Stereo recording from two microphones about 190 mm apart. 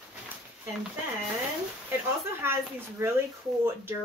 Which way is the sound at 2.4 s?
15° right (ahead or behind).